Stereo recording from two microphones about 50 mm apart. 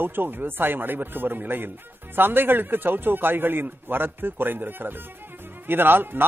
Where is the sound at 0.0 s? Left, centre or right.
Right.